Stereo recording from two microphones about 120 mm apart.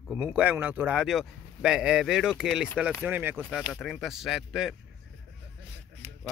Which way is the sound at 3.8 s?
Centre (ahead or behind).